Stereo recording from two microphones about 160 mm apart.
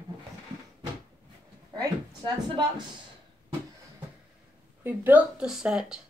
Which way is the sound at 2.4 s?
30° right (ahead or behind).